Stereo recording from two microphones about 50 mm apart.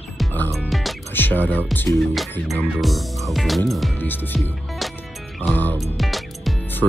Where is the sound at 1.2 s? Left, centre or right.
Left.